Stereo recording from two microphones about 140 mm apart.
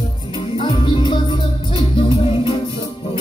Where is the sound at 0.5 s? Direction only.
40° left (ahead or behind).